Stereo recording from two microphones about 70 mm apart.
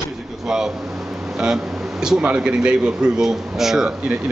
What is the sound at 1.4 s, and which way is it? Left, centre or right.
A man's voice, centre.